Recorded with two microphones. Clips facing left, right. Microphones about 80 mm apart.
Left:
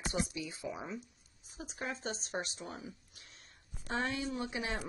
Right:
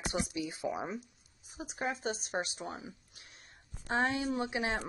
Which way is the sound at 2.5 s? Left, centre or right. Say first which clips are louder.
Right 3 dB; right.